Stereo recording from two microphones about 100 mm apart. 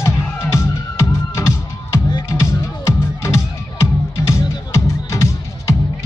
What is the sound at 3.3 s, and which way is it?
Music, 30° left (ahead or behind).